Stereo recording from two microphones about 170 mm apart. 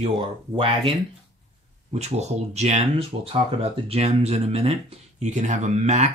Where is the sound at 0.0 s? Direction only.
30° right (ahead or behind).